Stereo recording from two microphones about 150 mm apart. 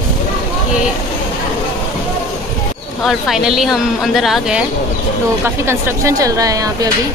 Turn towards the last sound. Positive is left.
turn(degrees=-25)  # may be behind; listen again after turning